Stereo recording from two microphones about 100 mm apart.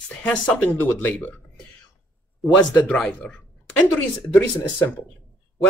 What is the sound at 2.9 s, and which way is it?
Speech, 15° left (ahead or behind).